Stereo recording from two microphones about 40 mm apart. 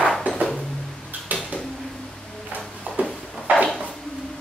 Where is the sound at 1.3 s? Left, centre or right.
Right.